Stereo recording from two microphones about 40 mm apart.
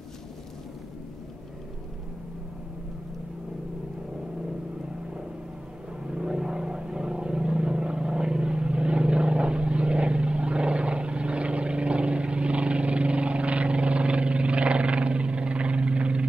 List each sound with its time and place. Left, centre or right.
6.0 s vehicle: right